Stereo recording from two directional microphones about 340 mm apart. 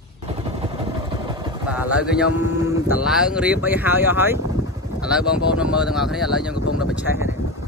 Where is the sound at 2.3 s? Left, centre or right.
Left.